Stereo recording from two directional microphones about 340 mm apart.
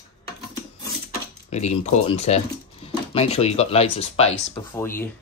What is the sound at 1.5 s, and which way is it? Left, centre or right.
Speech, centre.